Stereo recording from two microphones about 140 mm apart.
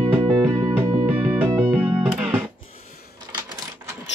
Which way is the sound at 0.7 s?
15° right (ahead or behind).